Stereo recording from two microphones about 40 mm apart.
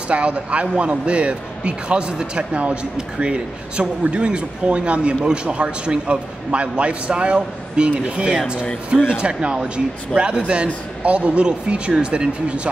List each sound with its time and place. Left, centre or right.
0.1 s a man's voice: right